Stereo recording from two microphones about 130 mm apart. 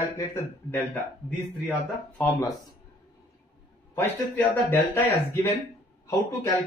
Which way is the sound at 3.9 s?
20° left (ahead or behind).